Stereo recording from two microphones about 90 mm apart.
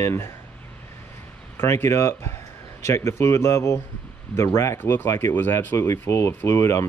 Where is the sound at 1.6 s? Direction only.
30° left (ahead or behind).